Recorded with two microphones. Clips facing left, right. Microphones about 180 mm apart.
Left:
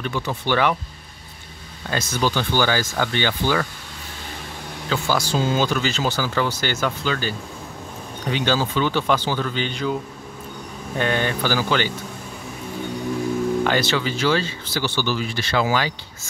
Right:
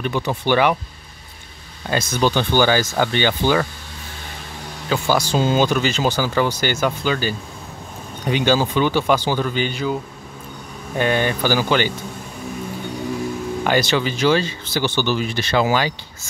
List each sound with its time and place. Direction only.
0.0 s speech: 20° right (ahead or behind)
1.9 s speech: 20° right (ahead or behind)
4.8 s speech: 15° right (ahead or behind)
11.0 s speech: 10° right (ahead or behind)
13.7 s speech: 15° right (ahead or behind)